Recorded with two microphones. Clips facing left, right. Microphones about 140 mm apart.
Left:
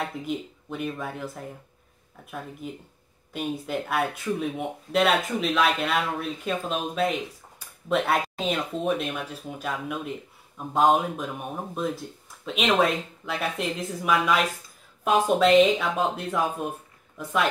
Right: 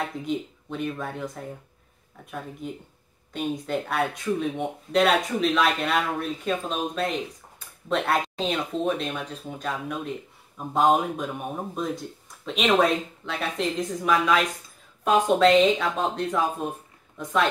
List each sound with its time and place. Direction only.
0.2 s speech: 5° left (ahead or behind)
2.6 s speech: 5° left (ahead or behind)